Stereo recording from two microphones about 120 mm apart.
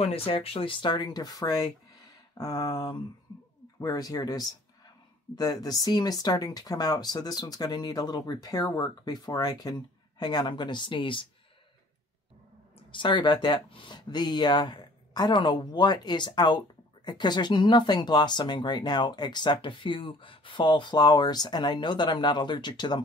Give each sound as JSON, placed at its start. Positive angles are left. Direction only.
{"t": 0.0, "sound": "speech", "side_deg": 50}
{"t": 12.7, "sound": "speech", "side_deg": 40}